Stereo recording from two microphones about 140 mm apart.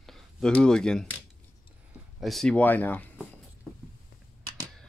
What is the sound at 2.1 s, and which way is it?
Speech, centre (ahead or behind).